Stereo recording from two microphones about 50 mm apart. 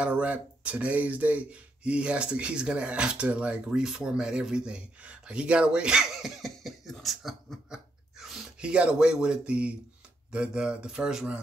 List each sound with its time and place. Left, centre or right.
0.0 s speech: right
6.1 s cough: centre
7.7 s a sound: centre
8.5 s speech: right